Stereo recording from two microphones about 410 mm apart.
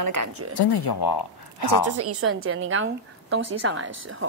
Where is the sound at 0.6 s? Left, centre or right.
Left.